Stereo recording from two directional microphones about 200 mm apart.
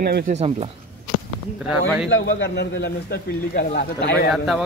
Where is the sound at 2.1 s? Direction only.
70° left (ahead or behind); by 4.3 s 55° left (ahead or behind).